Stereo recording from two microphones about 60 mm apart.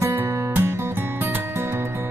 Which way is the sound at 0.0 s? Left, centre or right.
Right.